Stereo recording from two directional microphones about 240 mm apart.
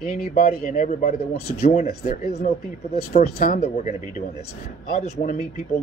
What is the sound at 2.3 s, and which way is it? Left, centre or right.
Speech, left.